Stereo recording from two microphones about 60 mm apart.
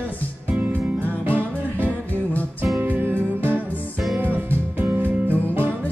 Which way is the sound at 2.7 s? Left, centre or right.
Right.